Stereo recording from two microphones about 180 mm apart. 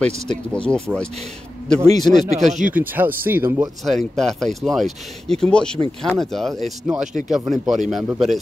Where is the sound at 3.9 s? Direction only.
Centre (ahead or behind).